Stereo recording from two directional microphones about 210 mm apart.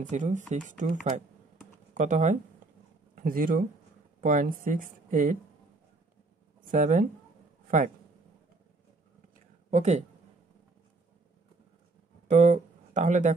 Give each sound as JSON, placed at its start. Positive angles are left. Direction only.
{"t": 0.1, "sound": "speech", "side_deg": -35}
{"t": 2.0, "sound": "speech", "side_deg": -35}
{"t": 6.6, "sound": "speech", "side_deg": -40}
{"t": 9.7, "sound": "speech", "side_deg": -35}
{"t": 12.3, "sound": "speech", "side_deg": -35}